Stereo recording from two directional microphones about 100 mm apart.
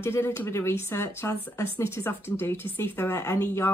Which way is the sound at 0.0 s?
25° left (ahead or behind).